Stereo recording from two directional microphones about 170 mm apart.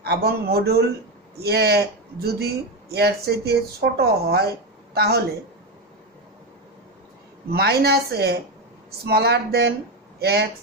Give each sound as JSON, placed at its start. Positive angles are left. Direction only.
{"t": 0.0, "sound": "speech", "side_deg": -70}
{"t": 7.5, "sound": "speech", "side_deg": -70}